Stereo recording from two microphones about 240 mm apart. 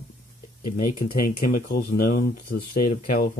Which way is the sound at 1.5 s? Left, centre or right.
Left.